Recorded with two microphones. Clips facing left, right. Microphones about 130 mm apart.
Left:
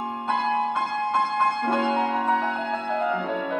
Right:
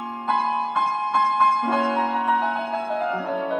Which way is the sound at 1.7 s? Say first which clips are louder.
Right 1 dB; 15° right (ahead or behind).